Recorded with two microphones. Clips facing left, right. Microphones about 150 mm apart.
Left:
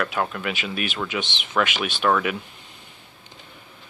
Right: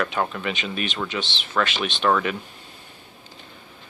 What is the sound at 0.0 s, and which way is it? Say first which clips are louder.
Speech: even; centre (ahead or behind).